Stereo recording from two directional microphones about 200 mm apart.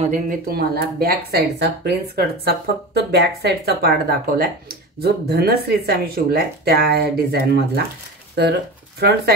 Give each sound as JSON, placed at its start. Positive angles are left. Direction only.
{"t": 0.0, "sound": "speech", "side_deg": -40}